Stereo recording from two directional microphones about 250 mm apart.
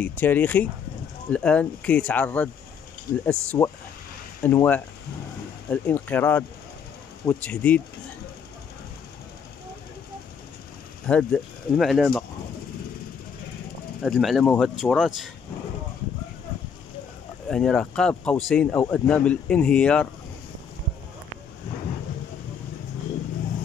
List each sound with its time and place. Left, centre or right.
0.0 s speech: centre
11.1 s speech: centre
14.0 s speech: centre
17.5 s speech: centre